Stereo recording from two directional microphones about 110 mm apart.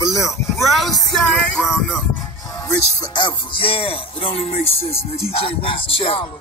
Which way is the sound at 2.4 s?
30° left (ahead or behind).